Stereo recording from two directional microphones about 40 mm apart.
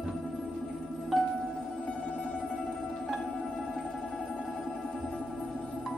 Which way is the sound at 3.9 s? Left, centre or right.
Left.